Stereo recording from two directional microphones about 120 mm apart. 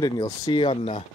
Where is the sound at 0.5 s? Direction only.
50° left (ahead or behind).